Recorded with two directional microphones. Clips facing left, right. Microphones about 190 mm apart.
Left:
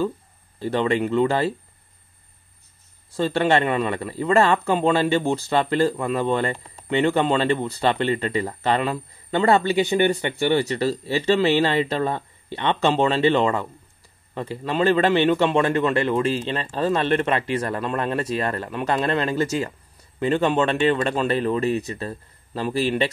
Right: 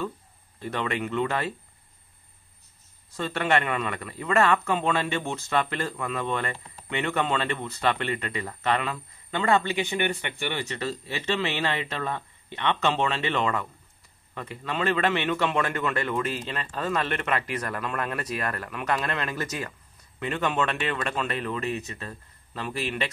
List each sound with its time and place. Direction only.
0.6 s speech: 30° left (ahead or behind)
3.1 s speech: 30° left (ahead or behind)